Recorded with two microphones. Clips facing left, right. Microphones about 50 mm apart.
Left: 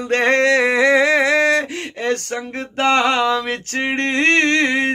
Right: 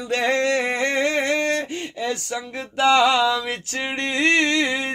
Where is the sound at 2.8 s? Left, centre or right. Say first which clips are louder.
Even; left.